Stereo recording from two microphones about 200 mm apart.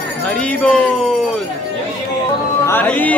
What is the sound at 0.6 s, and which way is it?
Speech, 5° left (ahead or behind).